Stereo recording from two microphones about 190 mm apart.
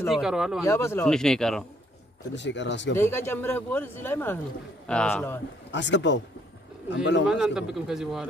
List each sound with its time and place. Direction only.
0.1 s speech: centre (ahead or behind)
0.7 s speech: 15° left (ahead or behind)
1.0 s speech: 5° left (ahead or behind)
2.3 s speech: 70° left (ahead or behind)
3.0 s speech: 10° left (ahead or behind)
5.7 s speech: 70° left (ahead or behind)
7.2 s speech: centre (ahead or behind)